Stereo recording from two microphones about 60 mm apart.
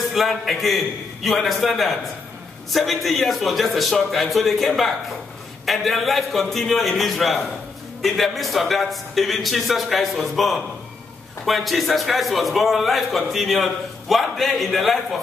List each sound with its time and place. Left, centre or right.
0.1 s a man's voice: centre